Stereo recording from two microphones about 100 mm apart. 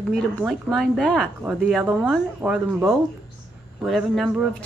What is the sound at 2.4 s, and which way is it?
Speech, 5° right (ahead or behind).